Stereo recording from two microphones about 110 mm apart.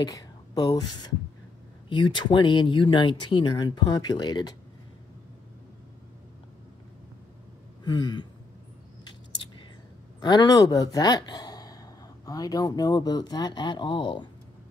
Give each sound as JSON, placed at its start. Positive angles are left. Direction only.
{"t": 0.0, "sound": "speech", "side_deg": 40}
{"t": 7.8, "sound": "speech", "side_deg": 45}
{"t": 10.2, "sound": "speech", "side_deg": 35}